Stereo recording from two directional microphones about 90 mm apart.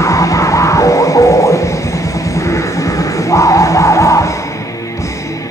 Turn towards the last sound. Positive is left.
turn(degrees=35)  # may be behind; listen again after turning